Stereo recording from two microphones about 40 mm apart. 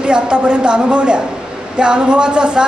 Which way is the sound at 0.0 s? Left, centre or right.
Right.